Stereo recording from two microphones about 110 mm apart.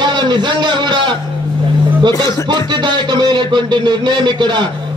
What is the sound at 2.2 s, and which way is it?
Speech, 45° right (ahead or behind).